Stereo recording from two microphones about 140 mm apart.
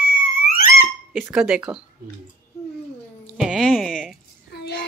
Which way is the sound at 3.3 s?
5° right (ahead or behind).